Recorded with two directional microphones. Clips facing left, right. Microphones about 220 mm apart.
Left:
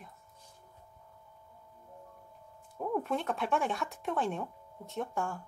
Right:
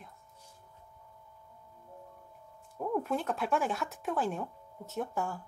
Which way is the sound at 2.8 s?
Centre (ahead or behind).